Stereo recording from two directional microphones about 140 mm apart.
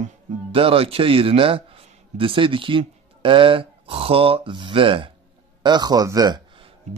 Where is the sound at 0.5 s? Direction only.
40° right (ahead or behind).